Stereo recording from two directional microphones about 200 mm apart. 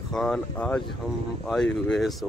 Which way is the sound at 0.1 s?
Centre (ahead or behind).